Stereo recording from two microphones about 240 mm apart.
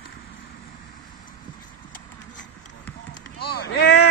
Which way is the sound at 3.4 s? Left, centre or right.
Left.